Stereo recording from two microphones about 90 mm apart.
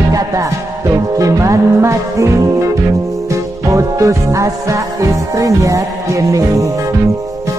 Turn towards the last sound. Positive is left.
turn(degrees=-35)  # may be behind; listen again after turning